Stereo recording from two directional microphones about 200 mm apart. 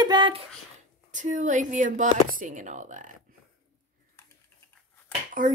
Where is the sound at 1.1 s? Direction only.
40° right (ahead or behind).